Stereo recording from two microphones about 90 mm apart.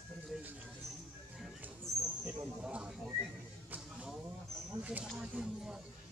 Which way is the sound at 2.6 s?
10° right (ahead or behind).